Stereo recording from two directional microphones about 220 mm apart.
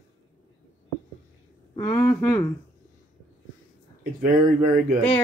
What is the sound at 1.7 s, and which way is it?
Speech, 15° left (ahead or behind).